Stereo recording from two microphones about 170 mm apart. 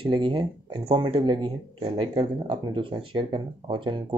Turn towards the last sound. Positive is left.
turn(degrees=-30)  # may be behind; listen again after turning